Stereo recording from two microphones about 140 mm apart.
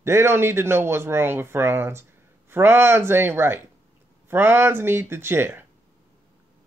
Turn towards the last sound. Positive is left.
turn(degrees=-15)  # may be behind; listen again after turning